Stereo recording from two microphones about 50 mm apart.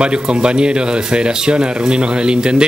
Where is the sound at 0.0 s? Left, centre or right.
Centre.